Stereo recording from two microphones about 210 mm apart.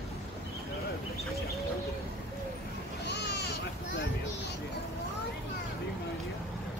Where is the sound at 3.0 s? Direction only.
55° left (ahead or behind).